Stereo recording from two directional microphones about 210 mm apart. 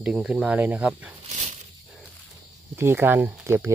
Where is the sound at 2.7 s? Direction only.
10° right (ahead or behind).